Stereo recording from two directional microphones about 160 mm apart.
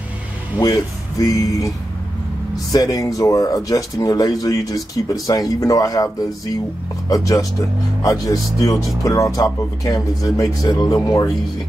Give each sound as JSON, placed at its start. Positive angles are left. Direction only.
{"t": 0.6, "sound": "speech", "side_deg": 25}
{"t": 2.7, "sound": "speech", "side_deg": 20}